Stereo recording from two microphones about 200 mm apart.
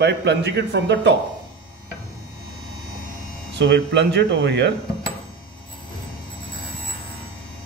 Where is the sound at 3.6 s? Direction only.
60° right (ahead or behind).